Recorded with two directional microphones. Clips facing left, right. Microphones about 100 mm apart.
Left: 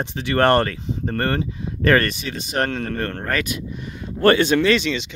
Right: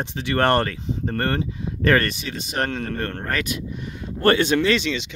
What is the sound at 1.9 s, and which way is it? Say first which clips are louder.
Speech: left 2 dB; 55° left (ahead or behind).